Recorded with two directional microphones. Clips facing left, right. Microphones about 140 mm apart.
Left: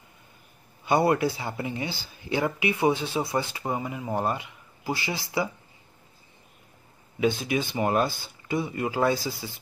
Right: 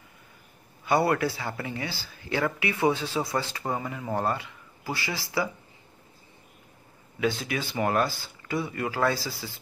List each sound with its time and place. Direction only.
0.8 s speech: 20° left (ahead or behind)
7.2 s speech: 20° left (ahead or behind)